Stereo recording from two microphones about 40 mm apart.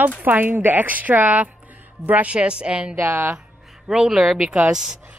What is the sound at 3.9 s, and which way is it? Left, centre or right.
Speech, centre.